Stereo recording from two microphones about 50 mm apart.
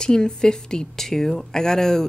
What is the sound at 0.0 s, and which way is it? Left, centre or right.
Speech, centre.